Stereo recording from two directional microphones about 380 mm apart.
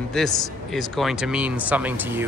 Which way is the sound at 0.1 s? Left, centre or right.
Centre.